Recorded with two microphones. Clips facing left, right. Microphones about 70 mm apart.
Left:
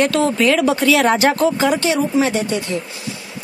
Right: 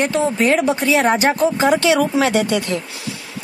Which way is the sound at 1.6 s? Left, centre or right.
Right.